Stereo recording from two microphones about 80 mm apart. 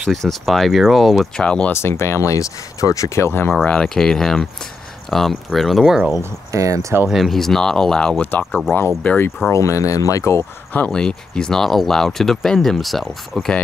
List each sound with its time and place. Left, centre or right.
0.1 s speech: centre
1.7 s speech: left
3.6 s speech: centre
6.5 s speech: right
7.1 s speech: centre
8.2 s speech: left
8.5 s speech: centre
9.0 s speech: centre
9.5 s speech: left
10.9 s speech: centre